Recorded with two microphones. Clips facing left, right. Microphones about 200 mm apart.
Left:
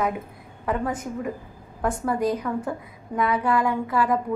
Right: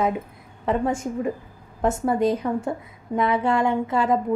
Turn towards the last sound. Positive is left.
turn(degrees=-25)  # may be behind; listen again after turning